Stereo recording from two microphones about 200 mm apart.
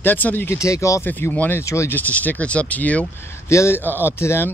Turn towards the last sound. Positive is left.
turn(degrees=10)  # may be behind; listen again after turning